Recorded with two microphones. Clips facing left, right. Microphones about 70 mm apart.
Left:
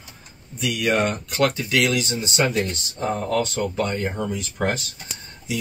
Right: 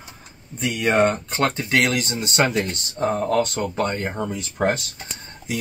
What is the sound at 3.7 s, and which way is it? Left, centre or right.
Speech, right.